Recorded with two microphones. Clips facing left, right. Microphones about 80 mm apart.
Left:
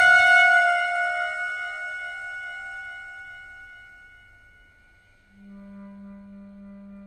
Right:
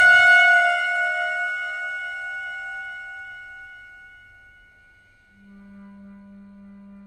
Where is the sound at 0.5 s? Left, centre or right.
Centre.